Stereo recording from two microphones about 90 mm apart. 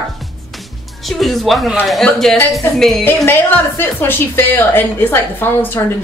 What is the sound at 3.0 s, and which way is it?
A woman's voice, 25° left (ahead or behind).